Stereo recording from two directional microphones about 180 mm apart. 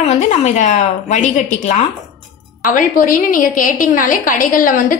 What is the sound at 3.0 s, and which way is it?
A woman's voice, 50° left (ahead or behind).